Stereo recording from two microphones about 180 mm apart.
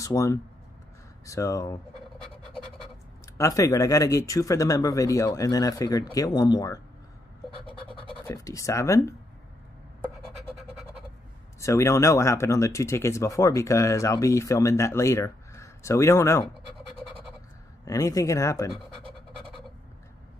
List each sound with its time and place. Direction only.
0.0 s speech: 15° left (ahead or behind)
3.3 s speech: 20° left (ahead or behind)
8.1 s speech: 15° left (ahead or behind)
11.6 s speech: 15° left (ahead or behind)
17.8 s speech: 20° left (ahead or behind)